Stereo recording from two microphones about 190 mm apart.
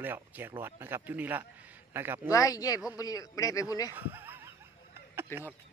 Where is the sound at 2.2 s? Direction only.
15° left (ahead or behind).